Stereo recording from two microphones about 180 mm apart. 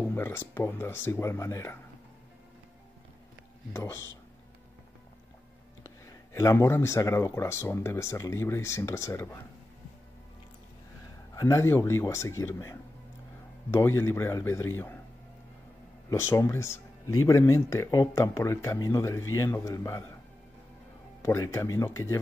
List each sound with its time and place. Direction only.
0.1 s a sound: 15° left (ahead or behind)
0.6 s speech: 10° left (ahead or behind)
3.7 s speech: 15° left (ahead or behind)
5.9 s speech: 15° left (ahead or behind)
11.3 s speech: 15° left (ahead or behind)
16.1 s speech: 15° left (ahead or behind)
21.2 s speech: 15° left (ahead or behind)